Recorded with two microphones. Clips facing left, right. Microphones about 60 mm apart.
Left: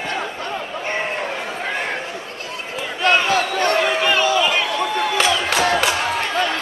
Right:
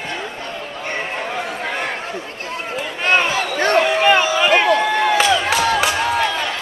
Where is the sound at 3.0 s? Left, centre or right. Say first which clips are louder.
Left 1 dB; right.